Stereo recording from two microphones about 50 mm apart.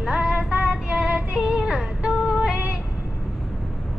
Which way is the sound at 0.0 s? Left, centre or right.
Right.